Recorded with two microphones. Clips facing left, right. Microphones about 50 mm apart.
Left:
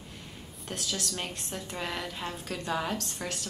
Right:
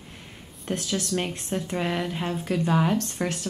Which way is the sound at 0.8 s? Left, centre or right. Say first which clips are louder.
Right 6 dB; right.